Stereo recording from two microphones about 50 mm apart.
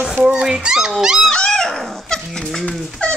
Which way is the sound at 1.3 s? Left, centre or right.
Centre.